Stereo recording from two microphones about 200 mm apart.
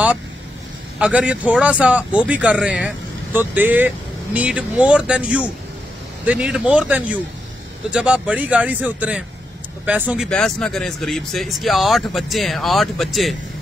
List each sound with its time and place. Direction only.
0.9 s speech: 5° right (ahead or behind)